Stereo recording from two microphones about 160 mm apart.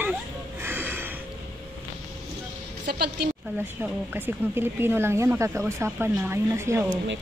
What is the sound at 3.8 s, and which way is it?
Speech, 10° right (ahead or behind).